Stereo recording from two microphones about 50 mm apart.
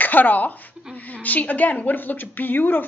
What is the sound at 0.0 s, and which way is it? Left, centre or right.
A woman's voice, left.